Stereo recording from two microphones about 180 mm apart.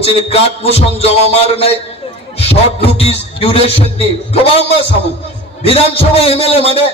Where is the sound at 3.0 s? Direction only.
35° left (ahead or behind).